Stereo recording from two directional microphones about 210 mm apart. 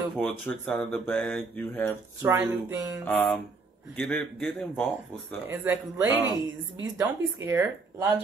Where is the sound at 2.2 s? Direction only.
15° right (ahead or behind).